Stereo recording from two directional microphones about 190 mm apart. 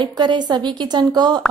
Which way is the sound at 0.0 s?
25° right (ahead or behind).